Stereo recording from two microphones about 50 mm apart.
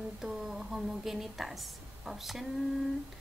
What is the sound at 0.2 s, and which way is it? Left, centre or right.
A woman's voice, centre.